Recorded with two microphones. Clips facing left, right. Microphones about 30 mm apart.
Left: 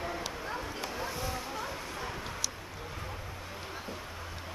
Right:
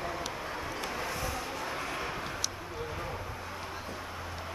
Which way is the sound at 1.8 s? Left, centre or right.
Right.